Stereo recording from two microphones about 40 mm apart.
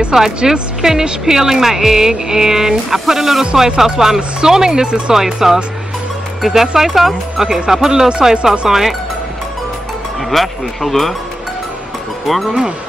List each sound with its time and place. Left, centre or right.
0.1 s a woman's voice: centre
5.1 s speech: centre
8.1 s speech: right
8.5 s speech: centre
10.3 s speech: centre
12.3 s speech: centre